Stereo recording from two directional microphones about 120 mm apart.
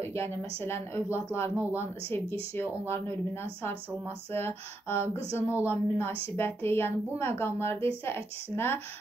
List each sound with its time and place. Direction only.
0.1 s a woman's voice: 20° left (ahead or behind)
4.3 s a woman's voice: 20° left (ahead or behind)
5.3 s speech: 15° right (ahead or behind)
5.7 s a woman's voice: 15° left (ahead or behind)